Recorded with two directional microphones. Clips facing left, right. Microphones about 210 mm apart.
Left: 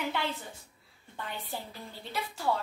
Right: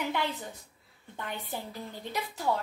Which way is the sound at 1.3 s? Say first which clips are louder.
Right 2 dB; 20° right (ahead or behind).